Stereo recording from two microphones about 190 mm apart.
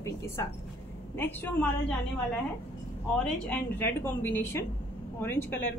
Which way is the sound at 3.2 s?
5° left (ahead or behind).